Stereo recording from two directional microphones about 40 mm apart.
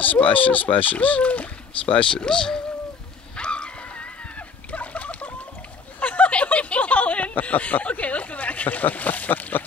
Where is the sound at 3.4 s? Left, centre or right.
Left.